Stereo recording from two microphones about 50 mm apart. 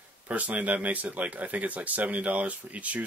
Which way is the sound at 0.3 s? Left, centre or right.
Right.